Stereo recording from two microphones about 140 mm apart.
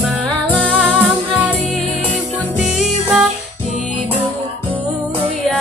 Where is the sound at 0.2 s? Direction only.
5° left (ahead or behind).